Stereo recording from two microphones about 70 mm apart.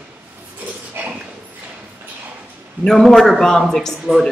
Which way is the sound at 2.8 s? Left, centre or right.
Centre.